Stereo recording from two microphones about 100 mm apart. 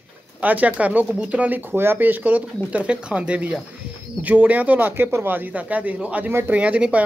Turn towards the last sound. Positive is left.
turn(degrees=-15)  # may be behind; listen again after turning